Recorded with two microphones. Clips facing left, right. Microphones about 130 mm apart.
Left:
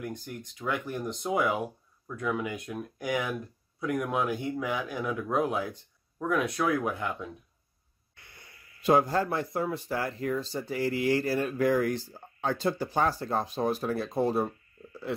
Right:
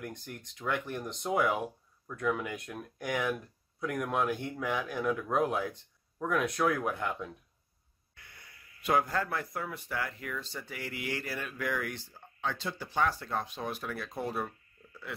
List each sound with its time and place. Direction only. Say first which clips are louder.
0.0 s speech: left 5 dB; 5° left (ahead or behind)
8.1 s speech: left 1 dB; 30° left (ahead or behind)